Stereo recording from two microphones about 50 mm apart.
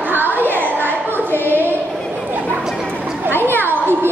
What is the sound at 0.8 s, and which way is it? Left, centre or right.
Child singing, right.